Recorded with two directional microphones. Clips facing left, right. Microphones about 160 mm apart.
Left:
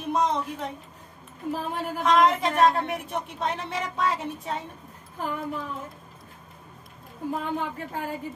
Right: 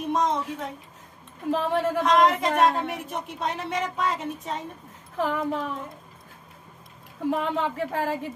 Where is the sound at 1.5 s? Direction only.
85° right.